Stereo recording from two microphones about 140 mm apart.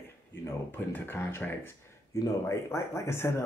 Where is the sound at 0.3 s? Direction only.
15° left (ahead or behind).